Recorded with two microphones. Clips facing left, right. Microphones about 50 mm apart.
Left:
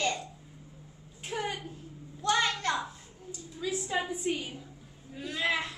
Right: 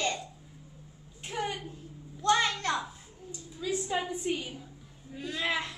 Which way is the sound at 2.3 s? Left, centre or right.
Centre.